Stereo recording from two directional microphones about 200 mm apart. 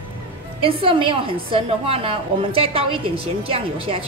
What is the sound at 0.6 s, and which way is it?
A woman's voice, 25° right (ahead or behind).